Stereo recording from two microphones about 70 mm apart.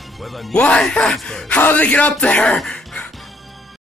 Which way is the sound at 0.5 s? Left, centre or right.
Centre.